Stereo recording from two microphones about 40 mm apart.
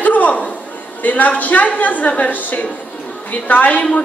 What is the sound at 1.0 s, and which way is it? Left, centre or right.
A woman's voice, left.